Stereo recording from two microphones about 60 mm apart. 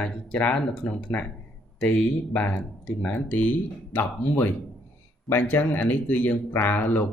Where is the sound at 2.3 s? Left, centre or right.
Left.